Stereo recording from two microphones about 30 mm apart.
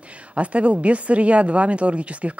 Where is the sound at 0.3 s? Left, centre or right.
Right.